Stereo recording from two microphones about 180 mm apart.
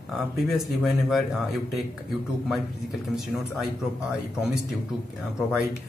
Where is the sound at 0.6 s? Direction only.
Centre (ahead or behind).